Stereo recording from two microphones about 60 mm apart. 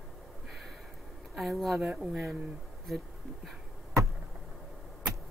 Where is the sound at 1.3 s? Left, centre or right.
Centre.